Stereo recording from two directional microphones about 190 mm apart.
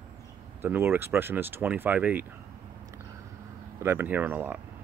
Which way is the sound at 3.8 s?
10° right (ahead or behind).